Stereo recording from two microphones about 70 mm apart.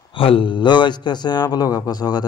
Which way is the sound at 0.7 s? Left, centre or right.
Left.